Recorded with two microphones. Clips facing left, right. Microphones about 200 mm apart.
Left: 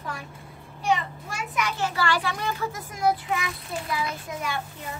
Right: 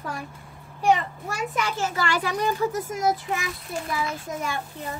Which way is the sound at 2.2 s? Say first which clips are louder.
Right 5 dB; 40° right (ahead or behind).